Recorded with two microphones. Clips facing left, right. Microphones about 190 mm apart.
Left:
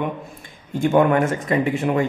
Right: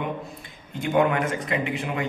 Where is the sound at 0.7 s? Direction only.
45° left (ahead or behind).